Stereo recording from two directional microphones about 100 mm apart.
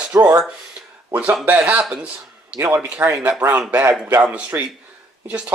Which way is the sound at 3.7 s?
15° right (ahead or behind).